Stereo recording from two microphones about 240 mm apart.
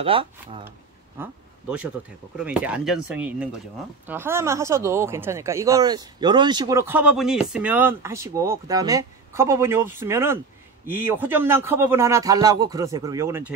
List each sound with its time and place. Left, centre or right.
0.0 s speech: right
1.1 s speech: centre